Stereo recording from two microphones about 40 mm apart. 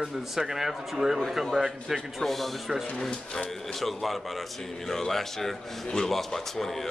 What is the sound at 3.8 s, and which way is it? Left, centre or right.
A man's voice, centre.